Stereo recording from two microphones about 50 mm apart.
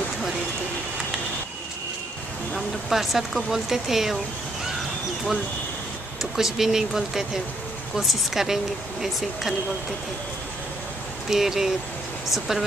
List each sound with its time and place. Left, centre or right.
2.9 s speech: centre
6.3 s speech: centre
11.2 s speech: centre